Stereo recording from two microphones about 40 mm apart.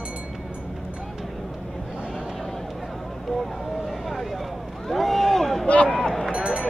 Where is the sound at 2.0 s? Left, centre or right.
Right.